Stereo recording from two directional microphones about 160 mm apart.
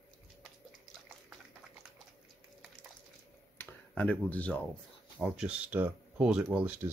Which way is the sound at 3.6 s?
10° left (ahead or behind).